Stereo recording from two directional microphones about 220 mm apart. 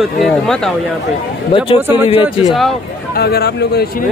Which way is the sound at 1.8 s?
10° right (ahead or behind).